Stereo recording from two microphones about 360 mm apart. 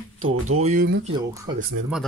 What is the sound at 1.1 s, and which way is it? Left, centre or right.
Speech, centre.